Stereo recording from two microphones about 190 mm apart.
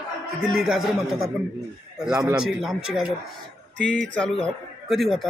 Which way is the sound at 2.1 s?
15° right (ahead or behind).